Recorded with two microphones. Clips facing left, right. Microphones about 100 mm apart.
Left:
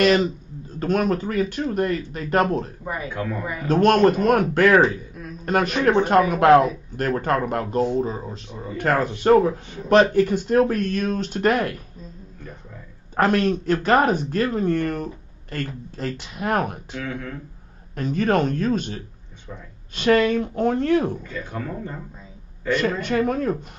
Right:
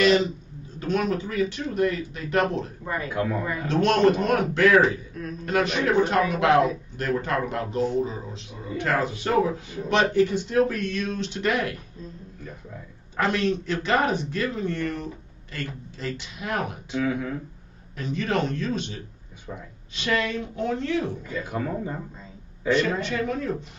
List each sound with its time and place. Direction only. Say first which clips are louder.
0.0 s speech: left 2 dB; 50° left (ahead or behind)
2.8 s speech: left 1 dB; 15° left (ahead or behind)
3.1 s a man's voice: right 4 dB; 5° right (ahead or behind)
3.6 s speech: left 4 dB; 50° left (ahead or behind)
13.1 s speech: left 5 dB; 45° left (ahead or behind)
16.9 s a man's voice: right 4 dB; 10° right (ahead or behind)
17.9 s speech: left 6 dB; 50° left (ahead or behind)
21.3 s a man's voice: right 2 dB; 10° right (ahead or behind)
22.7 s speech: left 1 dB; 50° left (ahead or behind)